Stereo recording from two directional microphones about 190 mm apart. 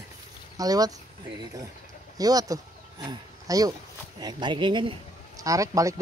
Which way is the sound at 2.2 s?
20° right (ahead or behind).